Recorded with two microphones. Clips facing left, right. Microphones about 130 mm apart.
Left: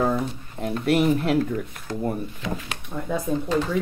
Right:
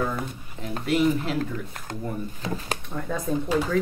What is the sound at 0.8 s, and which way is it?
Speech, 55° left (ahead or behind).